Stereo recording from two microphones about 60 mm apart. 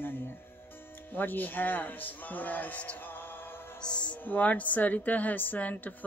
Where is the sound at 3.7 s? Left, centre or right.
Centre.